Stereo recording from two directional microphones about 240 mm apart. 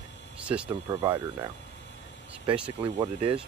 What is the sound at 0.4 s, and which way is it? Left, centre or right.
Speech, centre.